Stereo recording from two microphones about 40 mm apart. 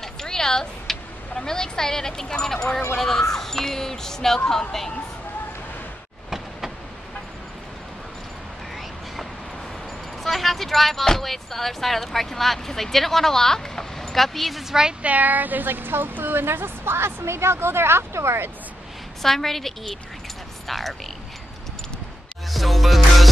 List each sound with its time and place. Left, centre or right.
0.0 s speech: centre
10.2 s speech: centre
14.7 s a woman's voice: centre
15.0 s a woman's voice: right
19.2 s speech: centre
22.5 s music: centre